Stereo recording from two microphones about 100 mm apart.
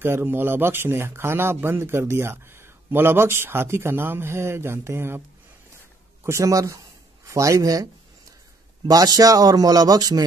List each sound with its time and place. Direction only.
0.0 s speech: 20° right (ahead or behind)
6.2 s a sound: 30° right (ahead or behind)
8.8 s speech: 40° right (ahead or behind)